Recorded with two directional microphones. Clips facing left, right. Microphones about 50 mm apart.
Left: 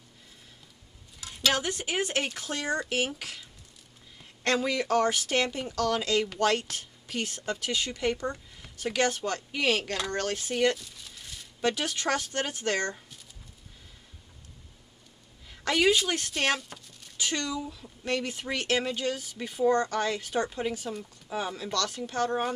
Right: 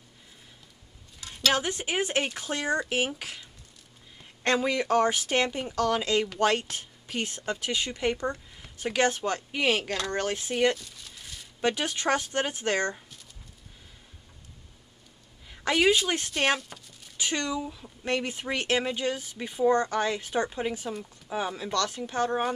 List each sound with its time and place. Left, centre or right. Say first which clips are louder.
1.5 s speech: right 2 dB; right
10.8 s a sound: even; centre
11.6 s speech: right 1 dB; right
15.6 s speech: right 1 dB; centre
16.5 s a sound: right 1 dB; centre
17.2 s speech: right 2 dB; right